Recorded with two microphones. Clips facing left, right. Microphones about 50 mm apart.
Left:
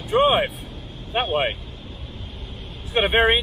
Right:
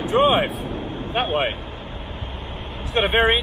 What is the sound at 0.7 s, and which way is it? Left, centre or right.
Vehicle, right.